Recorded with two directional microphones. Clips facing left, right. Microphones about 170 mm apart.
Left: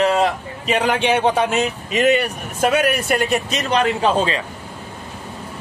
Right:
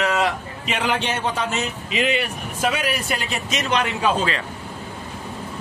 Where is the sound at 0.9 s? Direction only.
60° left (ahead or behind).